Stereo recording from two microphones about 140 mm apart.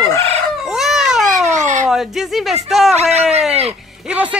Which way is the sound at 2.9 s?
50° right (ahead or behind).